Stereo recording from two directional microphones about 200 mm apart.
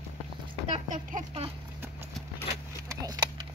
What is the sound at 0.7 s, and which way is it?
Speech, 35° right (ahead or behind).